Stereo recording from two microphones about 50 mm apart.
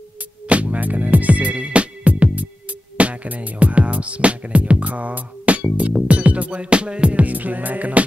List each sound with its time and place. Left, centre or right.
0.5 s music: right